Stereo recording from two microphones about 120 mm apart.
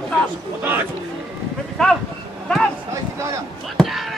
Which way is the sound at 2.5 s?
10° left (ahead or behind).